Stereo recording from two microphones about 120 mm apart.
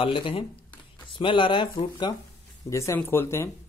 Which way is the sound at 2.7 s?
25° left (ahead or behind).